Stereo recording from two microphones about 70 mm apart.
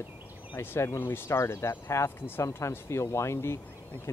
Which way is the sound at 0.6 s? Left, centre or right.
Left.